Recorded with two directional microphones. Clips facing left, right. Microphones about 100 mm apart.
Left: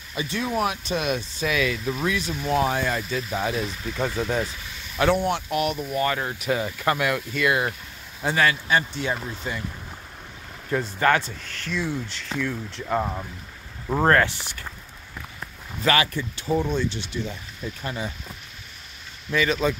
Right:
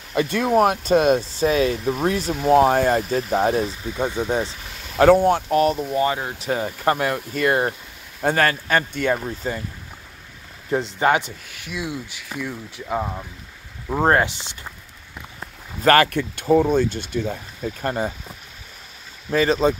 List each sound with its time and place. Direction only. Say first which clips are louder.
0.1 s speech: right 8 dB; 55° right (ahead or behind); by 3.7 s 35° right (ahead or behind)
3.8 s speech: right 2 dB; 20° right (ahead or behind)
4.9 s speech: right 8 dB; 40° right (ahead or behind); by 6.5 s 25° right (ahead or behind)
6.5 s speech: right 3 dB; 35° right (ahead or behind)
10.7 s speech: right 2 dB; 20° right (ahead or behind); by 13.3 s centre (ahead or behind)
14.0 s speech: right 1 dB; 20° right (ahead or behind)
15.8 s speech: right 6 dB; 50° right (ahead or behind)
19.3 s speech: right 5 dB; 35° right (ahead or behind)